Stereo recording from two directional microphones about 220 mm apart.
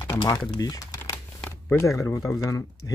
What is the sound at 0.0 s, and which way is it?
Typing, 15° left (ahead or behind).